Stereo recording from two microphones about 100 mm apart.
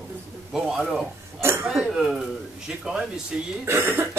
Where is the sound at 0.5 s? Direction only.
5° right (ahead or behind).